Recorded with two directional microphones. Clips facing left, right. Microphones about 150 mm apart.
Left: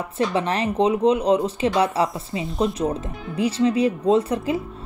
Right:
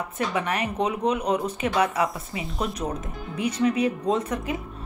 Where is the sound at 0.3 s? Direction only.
30° left (ahead or behind).